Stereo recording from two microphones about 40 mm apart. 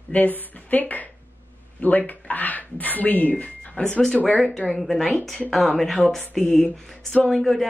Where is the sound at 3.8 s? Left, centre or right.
Left.